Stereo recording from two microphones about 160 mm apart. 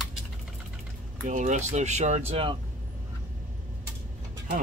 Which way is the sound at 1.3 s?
50° right (ahead or behind).